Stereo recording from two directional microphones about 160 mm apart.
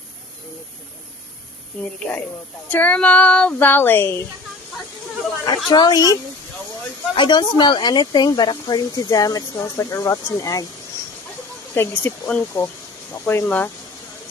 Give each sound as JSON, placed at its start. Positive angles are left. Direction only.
{"t": 1.8, "sound": "speech", "side_deg": 10}
{"t": 5.7, "sound": "speech", "side_deg": 25}
{"t": 7.2, "sound": "speech", "side_deg": 30}
{"t": 11.7, "sound": "speech", "side_deg": 15}